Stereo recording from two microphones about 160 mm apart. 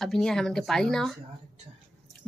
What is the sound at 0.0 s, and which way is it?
A woman's voice, centre (ahead or behind).